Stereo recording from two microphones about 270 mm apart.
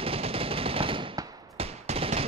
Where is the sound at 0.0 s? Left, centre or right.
Right.